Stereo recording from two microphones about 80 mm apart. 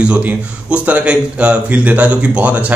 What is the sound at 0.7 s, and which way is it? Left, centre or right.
Speech, centre.